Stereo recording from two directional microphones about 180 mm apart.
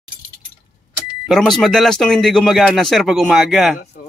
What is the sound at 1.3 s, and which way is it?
Speech, centre (ahead or behind).